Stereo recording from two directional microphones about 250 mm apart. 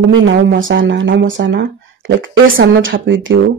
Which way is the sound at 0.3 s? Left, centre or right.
Right.